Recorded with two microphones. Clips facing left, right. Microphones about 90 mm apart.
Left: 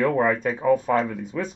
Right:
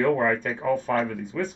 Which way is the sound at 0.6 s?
10° left (ahead or behind).